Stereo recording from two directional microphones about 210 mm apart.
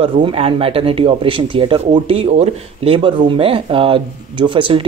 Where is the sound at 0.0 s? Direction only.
25° right (ahead or behind).